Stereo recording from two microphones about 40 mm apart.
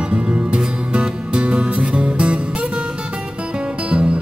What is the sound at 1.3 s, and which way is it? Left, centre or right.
Music, right.